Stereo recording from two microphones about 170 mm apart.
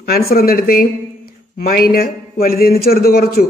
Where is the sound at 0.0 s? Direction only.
60° left (ahead or behind).